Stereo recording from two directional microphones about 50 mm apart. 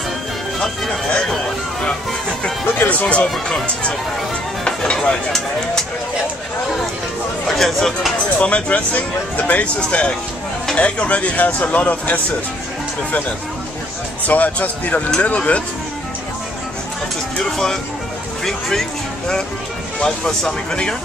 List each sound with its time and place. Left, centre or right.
0.6 s speech: centre
2.6 s music: left
2.9 s speech: left; by 5.9 s centre
7.4 s speech: centre
8.4 s speech: left
14.2 s speech: left
17.4 s speech: centre